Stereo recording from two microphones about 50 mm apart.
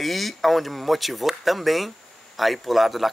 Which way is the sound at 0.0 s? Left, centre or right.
Centre.